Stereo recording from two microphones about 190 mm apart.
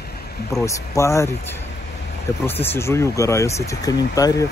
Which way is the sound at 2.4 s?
10° left (ahead or behind).